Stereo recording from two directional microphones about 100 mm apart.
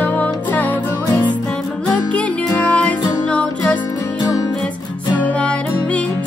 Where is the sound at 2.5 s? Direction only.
10° left (ahead or behind).